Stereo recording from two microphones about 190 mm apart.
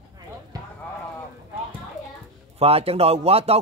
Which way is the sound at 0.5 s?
20° right (ahead or behind).